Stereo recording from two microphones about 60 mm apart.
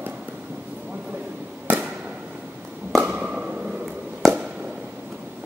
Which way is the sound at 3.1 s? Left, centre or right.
Centre.